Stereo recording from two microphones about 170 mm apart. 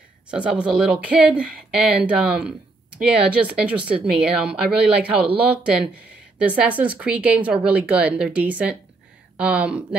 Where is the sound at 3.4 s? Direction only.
10° right (ahead or behind).